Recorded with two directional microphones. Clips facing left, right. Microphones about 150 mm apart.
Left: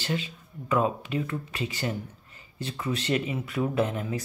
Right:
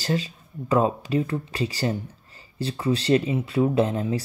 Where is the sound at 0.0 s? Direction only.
35° right (ahead or behind).